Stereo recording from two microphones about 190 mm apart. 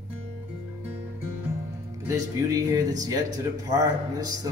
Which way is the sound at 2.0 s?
15° right (ahead or behind).